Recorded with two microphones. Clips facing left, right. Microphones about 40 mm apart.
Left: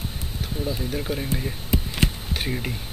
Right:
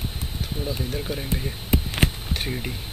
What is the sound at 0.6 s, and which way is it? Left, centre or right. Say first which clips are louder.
Speech: left 2 dB; centre.